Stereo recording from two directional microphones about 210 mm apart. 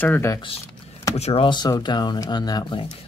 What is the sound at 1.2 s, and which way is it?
Speech, 30° left (ahead or behind).